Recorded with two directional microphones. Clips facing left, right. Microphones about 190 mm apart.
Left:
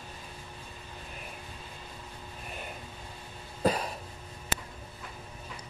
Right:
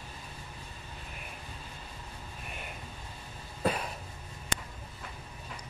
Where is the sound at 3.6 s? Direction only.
40° left (ahead or behind).